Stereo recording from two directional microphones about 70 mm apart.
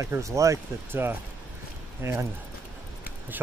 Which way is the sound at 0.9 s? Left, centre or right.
Right.